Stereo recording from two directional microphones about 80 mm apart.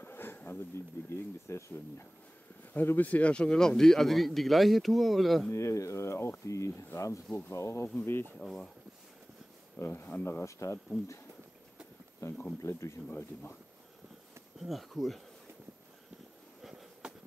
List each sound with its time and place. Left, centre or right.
0.0 s a sound: left
1.0 s speech: left
2.7 s speech: left; by 5.5 s centre
5.5 s speech: left
8.4 s speech: centre
9.8 s speech: left
10.4 s speech: left
12.2 s speech: left
13.1 s speech: left
14.6 s speech: centre